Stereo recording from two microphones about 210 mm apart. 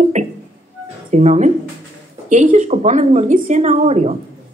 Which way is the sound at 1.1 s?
35° right (ahead or behind).